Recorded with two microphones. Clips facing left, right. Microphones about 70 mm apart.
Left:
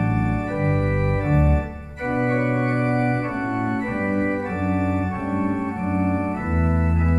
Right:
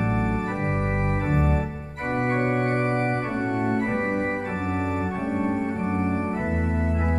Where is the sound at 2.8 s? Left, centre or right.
Left.